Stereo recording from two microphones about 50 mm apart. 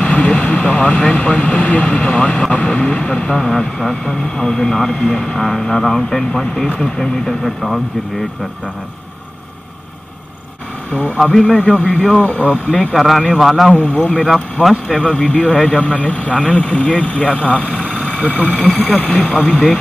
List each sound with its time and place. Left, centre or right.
0.0 s speech: left; by 7.8 s centre
10.9 s speech: left
12.9 s speech: centre
13.7 s speech: left
14.3 s speech: centre
15.0 s speech: left